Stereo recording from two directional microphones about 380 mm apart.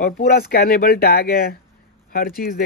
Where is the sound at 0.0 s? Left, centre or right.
Left.